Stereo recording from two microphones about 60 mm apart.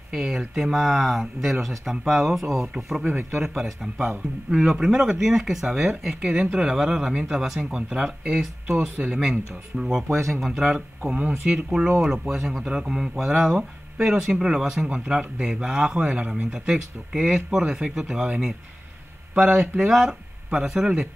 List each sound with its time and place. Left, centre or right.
0.1 s speech: centre
8.9 s speech: centre
9.2 s speech: centre
11.1 s speech: centre
19.8 s speech: centre